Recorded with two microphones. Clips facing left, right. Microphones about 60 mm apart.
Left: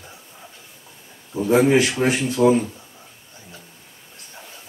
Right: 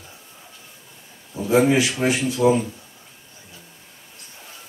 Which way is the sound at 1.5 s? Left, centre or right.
Left.